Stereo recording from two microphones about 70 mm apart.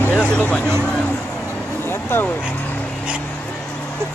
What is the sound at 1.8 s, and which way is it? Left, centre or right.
Vehicle, left.